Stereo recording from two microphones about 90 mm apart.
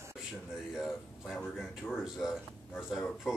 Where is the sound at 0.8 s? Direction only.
5° left (ahead or behind).